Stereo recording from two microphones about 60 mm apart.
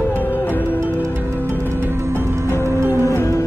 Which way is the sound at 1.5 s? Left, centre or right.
Right.